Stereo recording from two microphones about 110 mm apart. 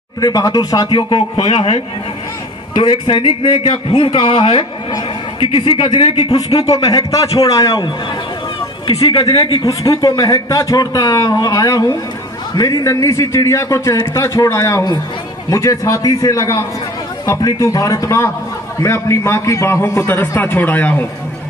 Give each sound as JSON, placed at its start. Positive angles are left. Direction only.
{"t": 0.2, "sound": "a man's voice", "side_deg": 35}
{"t": 6.9, "sound": "a man's voice", "side_deg": 35}